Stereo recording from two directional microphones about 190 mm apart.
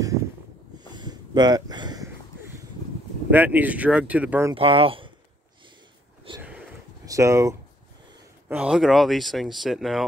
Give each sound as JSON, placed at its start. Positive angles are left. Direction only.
{"t": 0.7, "sound": "a sound", "side_deg": -20}
{"t": 3.3, "sound": "speech", "side_deg": -10}
{"t": 4.6, "sound": "speech", "side_deg": -30}
{"t": 6.3, "sound": "speech", "side_deg": -30}
{"t": 7.1, "sound": "speech", "side_deg": -15}
{"t": 8.5, "sound": "speech", "side_deg": -5}